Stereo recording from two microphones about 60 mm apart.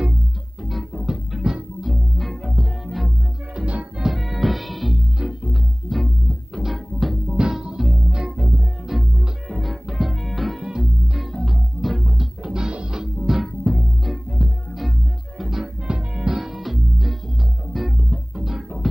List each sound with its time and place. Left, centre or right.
0.9 s music: centre
3.5 s music: right
4.0 s music: centre
8.8 s music: centre
14.4 s music: centre
14.8 s music: centre